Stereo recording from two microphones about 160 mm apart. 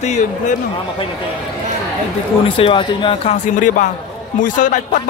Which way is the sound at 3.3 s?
55° left (ahead or behind).